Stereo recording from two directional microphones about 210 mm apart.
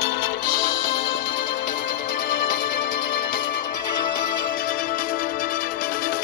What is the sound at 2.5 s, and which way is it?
Music, 40° left (ahead or behind).